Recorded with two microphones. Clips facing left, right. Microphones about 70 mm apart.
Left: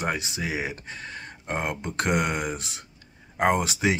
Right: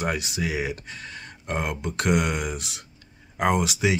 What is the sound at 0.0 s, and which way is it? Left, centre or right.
Speech, left.